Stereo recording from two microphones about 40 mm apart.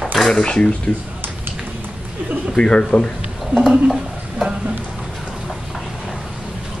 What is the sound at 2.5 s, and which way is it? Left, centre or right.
Speech, left.